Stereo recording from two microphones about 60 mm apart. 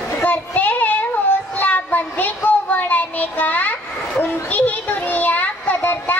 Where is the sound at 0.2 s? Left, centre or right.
Left.